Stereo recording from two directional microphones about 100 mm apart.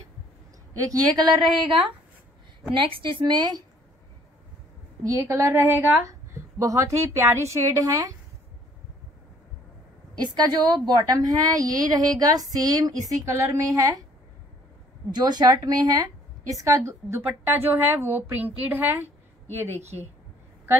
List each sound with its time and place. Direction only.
0.7 s a woman's voice: 40° right (ahead or behind)
2.7 s speech: 55° right (ahead or behind)
5.0 s a woman's voice: 30° right (ahead or behind)
10.1 s a woman's voice: 45° right (ahead or behind)
15.1 s a woman's voice: 45° right (ahead or behind)
17.3 s a woman's voice: 20° right (ahead or behind)